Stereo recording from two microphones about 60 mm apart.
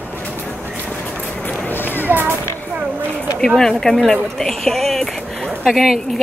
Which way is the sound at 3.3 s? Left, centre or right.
Centre.